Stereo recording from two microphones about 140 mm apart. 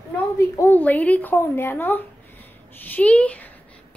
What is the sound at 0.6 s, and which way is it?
Speech, 15° left (ahead or behind).